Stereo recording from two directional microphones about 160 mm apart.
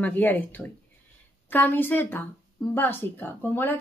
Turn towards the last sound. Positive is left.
turn(degrees=15)  # may be behind; listen again after turning